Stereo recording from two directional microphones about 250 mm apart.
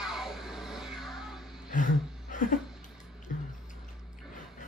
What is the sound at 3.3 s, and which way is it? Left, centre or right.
Music, left.